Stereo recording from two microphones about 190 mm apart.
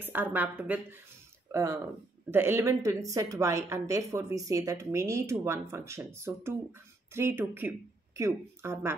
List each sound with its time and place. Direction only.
0.0 s speech: 10° right (ahead or behind)